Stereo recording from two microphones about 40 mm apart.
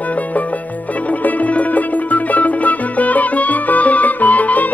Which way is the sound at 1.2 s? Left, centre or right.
Left.